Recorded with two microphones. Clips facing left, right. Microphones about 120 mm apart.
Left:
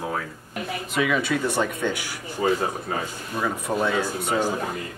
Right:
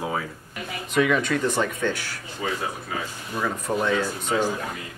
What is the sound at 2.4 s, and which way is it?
Speech, 40° left (ahead or behind).